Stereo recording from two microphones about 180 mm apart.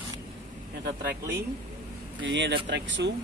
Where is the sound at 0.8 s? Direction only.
60° right (ahead or behind).